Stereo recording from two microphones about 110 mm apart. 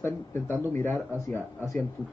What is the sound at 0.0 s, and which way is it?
Speech, 20° left (ahead or behind).